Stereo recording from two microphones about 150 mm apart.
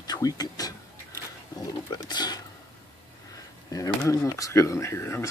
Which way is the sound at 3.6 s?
20° left (ahead or behind).